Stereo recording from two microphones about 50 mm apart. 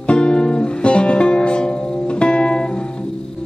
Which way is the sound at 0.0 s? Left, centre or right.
Left.